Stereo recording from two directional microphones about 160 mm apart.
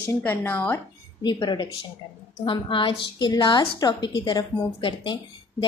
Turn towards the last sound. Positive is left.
turn(degrees=30)  # may be behind; listen again after turning